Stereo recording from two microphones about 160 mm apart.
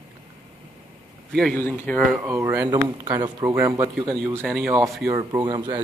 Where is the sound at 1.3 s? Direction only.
5° left (ahead or behind).